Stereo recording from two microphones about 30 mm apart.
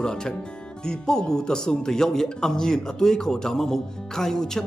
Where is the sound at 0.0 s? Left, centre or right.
Left.